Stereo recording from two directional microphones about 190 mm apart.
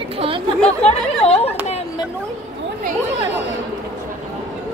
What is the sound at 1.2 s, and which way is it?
Speech, 30° left (ahead or behind).